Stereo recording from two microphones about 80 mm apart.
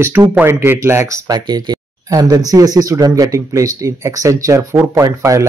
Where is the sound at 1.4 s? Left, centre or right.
Right.